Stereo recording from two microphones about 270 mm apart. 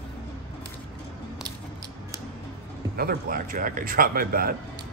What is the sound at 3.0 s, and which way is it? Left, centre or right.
A man's voice, right.